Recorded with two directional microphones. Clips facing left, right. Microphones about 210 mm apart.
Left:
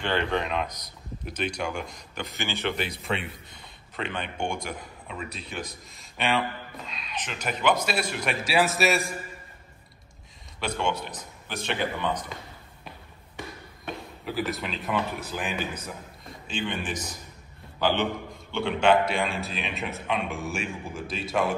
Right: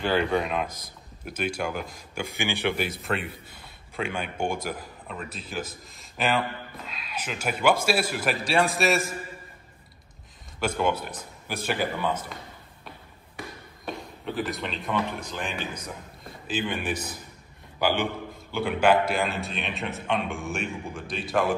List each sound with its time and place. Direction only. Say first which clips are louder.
0.0 s speech: right 3 dB; 5° right (ahead or behind)
0.7 s a man's voice: right 1 dB; 50° right (ahead or behind)
1.2 s a man's voice: right 1 dB; 5° right (ahead or behind)
10.8 s speech: right 2 dB; 5° right (ahead or behind)
14.2 s a man's voice: even; centre (ahead or behind)
16.4 s a man's voice: right 2 dB; 5° right (ahead or behind)